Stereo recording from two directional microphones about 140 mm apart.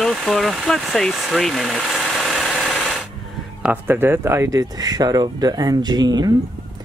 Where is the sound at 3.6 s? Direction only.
15° right (ahead or behind); by 6.2 s 30° right (ahead or behind).